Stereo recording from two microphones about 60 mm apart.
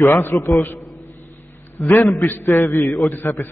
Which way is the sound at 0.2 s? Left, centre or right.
Left.